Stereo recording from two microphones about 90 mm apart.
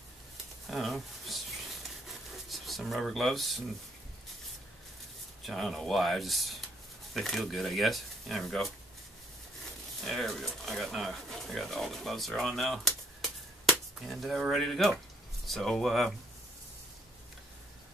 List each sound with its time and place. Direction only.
0.7 s speech: centre (ahead or behind)
2.0 s a sound: centre (ahead or behind)
5.4 s speech: centre (ahead or behind)
10.0 s speech: centre (ahead or behind)
13.2 s a sound: centre (ahead or behind)
15.4 s speech: 5° left (ahead or behind)